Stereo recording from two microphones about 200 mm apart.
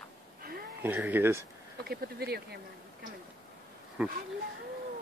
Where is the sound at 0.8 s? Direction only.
10° right (ahead or behind).